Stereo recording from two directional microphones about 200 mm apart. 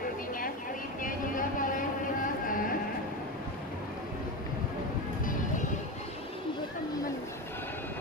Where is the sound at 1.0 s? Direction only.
40° left (ahead or behind).